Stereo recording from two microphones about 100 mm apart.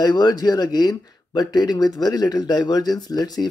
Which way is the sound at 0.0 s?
40° left (ahead or behind).